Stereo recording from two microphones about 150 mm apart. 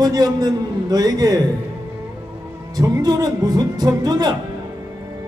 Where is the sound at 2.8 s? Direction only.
25° right (ahead or behind).